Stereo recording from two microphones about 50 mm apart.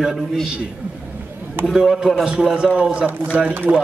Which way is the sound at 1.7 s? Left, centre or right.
Centre.